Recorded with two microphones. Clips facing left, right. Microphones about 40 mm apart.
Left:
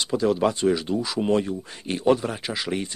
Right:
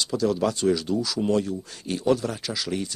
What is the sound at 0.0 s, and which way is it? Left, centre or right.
Speech, left.